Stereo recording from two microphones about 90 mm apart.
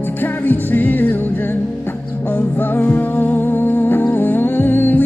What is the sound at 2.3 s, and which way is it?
Music, 20° left (ahead or behind).